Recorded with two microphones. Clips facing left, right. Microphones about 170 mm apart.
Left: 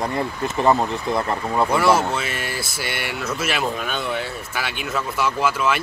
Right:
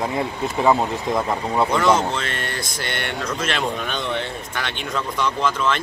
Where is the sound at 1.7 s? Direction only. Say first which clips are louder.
Left 1 dB; 10° left (ahead or behind).